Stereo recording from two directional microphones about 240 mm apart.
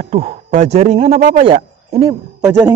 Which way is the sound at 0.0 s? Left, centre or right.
Right.